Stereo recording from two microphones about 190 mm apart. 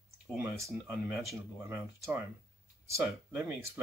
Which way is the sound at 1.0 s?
5° right (ahead or behind).